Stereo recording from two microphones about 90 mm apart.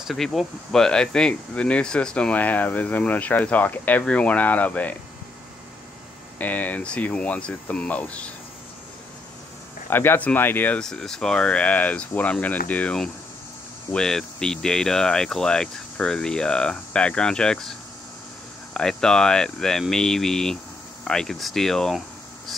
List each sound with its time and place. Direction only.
0.0 s speech: centre (ahead or behind); by 4.9 s 15° left (ahead or behind)
6.3 s speech: 20° left (ahead or behind)
9.8 s speech: 25° left (ahead or behind)
10.8 s speech: 5° left (ahead or behind)